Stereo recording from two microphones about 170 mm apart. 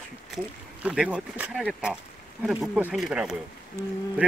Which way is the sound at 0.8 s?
5° right (ahead or behind).